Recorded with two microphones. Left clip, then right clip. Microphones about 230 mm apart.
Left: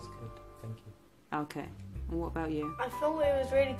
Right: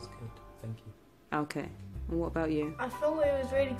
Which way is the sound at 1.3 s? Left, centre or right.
Centre.